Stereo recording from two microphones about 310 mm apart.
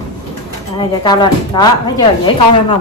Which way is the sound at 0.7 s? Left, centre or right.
Centre.